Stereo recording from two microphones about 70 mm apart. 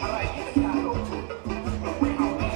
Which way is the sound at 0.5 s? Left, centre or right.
Centre.